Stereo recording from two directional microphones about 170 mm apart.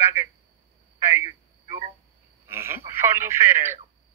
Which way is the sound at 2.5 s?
15° right (ahead or behind).